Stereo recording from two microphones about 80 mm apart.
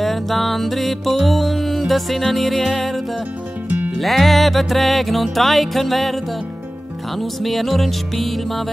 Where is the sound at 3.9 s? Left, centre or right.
Centre.